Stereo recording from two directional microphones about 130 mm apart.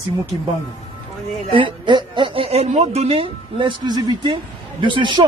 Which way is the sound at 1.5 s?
40° right (ahead or behind).